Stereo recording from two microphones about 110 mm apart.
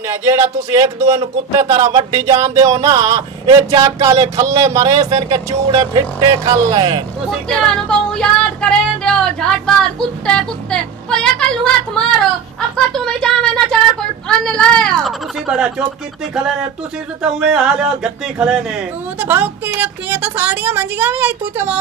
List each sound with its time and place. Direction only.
0.1 s speech: 25° right (ahead or behind)
0.8 s a sound: 35° right (ahead or behind)
3.5 s speech: 30° right (ahead or behind)
5.7 s a sound: 30° right (ahead or behind)
7.2 s speech: centre (ahead or behind)
15.4 s speech: 10° right (ahead or behind)
17.2 s speech: 5° right (ahead or behind)
19.1 s speech: 15° right (ahead or behind)